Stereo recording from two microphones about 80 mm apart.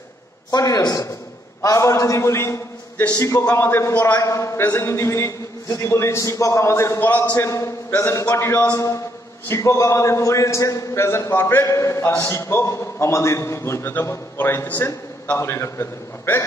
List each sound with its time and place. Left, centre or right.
0.5 s a man's voice: left
7.0 s a man's voice: left
8.7 s a man's voice: left
11.6 s a man's voice: left